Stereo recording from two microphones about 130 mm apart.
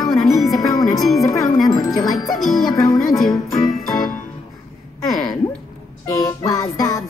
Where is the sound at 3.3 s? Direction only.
25° left (ahead or behind).